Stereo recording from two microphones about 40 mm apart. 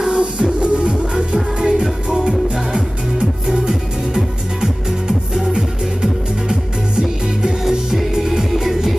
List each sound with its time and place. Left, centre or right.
0.0 s music: right
1.1 s music: centre